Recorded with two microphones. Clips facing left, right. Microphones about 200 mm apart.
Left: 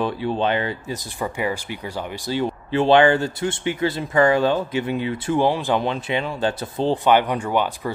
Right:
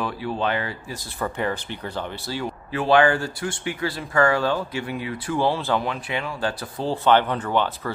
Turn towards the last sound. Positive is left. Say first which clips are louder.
# left 1 dB
turn(degrees=15)  # may be behind; listen again after turning